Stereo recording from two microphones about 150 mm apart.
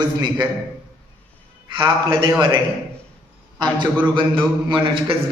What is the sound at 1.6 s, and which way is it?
Speech, 35° right (ahead or behind).